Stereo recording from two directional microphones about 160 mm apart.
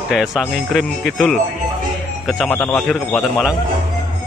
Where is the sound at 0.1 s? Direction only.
Centre (ahead or behind).